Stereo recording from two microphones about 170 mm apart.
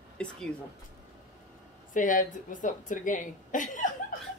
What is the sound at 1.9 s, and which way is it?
A woman's voice, 50° left (ahead or behind).